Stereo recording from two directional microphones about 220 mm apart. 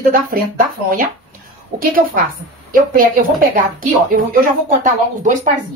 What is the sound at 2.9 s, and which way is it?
Speech, 40° right (ahead or behind).